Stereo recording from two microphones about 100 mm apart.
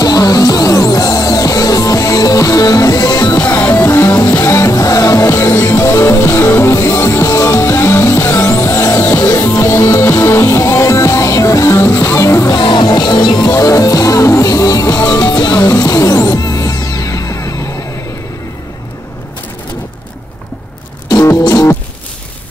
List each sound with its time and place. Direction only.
0.0 s music: 40° left (ahead or behind)
3.4 s music: 20° left (ahead or behind)
12.5 s music: 50° left (ahead or behind); by 17.8 s 35° left (ahead or behind)
21.5 s music: 35° left (ahead or behind)